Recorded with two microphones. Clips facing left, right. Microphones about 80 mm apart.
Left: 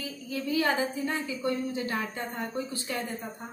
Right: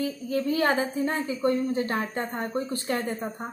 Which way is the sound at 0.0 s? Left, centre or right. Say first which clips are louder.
Right 7 dB; right.